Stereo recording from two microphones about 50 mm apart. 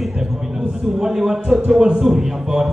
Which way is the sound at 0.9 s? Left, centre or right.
Centre.